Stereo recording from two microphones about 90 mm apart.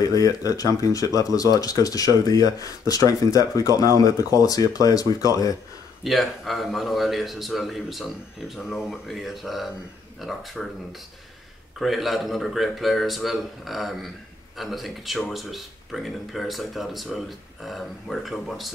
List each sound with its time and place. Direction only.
0.0 s speech: 40° left (ahead or behind)
6.0 s a man's voice: centre (ahead or behind)
11.8 s a man's voice: centre (ahead or behind)